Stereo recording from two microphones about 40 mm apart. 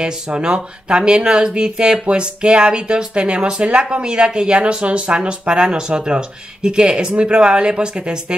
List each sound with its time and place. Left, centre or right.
0.0 s speech: right